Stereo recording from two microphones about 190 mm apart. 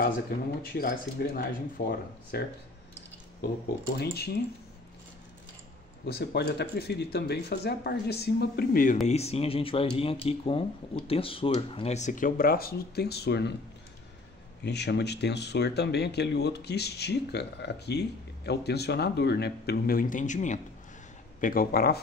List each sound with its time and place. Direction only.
0.6 s speech: 50° left (ahead or behind)
3.9 s speech: 55° left (ahead or behind)
6.0 s speech: 55° left (ahead or behind)
9.0 s speech: 35° left (ahead or behind); by 13.5 s 60° left (ahead or behind)
14.6 s speech: 60° left (ahead or behind)